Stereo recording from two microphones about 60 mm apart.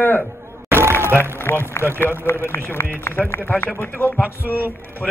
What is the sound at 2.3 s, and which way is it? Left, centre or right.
A man's voice, left.